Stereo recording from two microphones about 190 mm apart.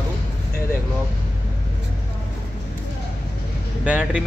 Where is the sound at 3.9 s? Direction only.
5° right (ahead or behind).